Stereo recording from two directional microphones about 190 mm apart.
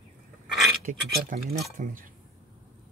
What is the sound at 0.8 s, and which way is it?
Speech, 45° right (ahead or behind).